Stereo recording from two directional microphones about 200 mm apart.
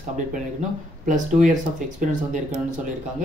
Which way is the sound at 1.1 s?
40° right (ahead or behind).